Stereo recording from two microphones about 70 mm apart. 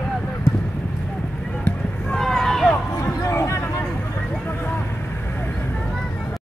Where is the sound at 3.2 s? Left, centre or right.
Left.